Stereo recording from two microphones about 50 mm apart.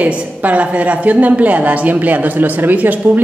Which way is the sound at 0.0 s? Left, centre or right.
Right.